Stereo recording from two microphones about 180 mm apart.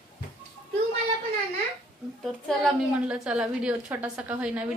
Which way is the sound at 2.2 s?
5° left (ahead or behind).